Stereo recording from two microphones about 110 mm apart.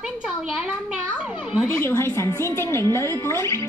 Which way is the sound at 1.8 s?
25° left (ahead or behind).